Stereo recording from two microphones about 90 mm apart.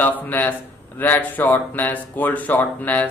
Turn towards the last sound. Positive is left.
turn(degrees=20)  # may be behind; listen again after turning